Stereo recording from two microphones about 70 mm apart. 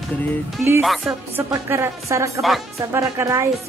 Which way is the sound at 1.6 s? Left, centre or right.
Right.